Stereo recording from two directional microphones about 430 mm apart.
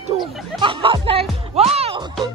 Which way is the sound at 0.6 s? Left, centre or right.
Centre.